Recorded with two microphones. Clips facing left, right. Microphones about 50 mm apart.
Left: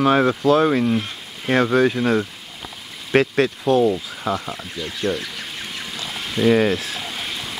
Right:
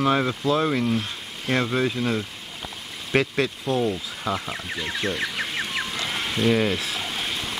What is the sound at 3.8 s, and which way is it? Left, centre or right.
Speech, centre.